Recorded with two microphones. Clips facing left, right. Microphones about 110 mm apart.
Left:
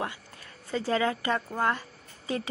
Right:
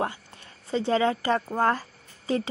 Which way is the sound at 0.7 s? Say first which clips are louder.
Right 4 dB; 25° right (ahead or behind).